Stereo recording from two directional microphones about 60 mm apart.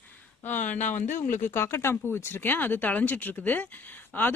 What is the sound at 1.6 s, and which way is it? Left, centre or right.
Speech, left.